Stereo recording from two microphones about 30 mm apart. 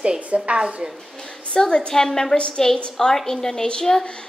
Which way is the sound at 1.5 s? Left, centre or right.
Left.